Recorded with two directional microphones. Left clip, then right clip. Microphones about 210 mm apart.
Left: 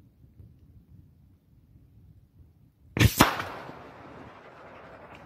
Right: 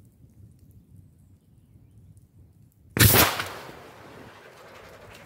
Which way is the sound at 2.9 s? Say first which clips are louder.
Right 3 dB; 20° right (ahead or behind).